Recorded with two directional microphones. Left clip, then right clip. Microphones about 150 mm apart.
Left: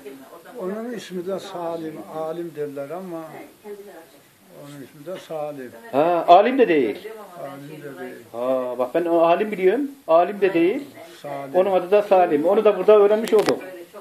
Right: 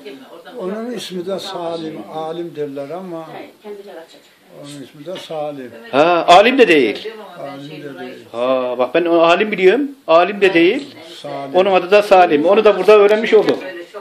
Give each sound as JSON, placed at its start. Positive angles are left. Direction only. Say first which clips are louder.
{"t": 0.6, "sound": "speech", "louder": "right 5 dB", "side_deg": -5}
{"t": 5.0, "sound": "speech", "louder": "right 5 dB", "side_deg": -10}
{"t": 8.4, "sound": "speech", "louder": "right 6 dB", "side_deg": -5}